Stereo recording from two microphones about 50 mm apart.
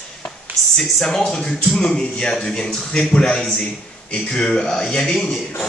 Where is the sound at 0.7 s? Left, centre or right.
Centre.